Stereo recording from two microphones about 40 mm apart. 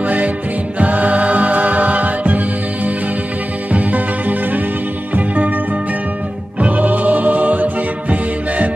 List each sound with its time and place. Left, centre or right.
0.0 s music: right
6.6 s music: right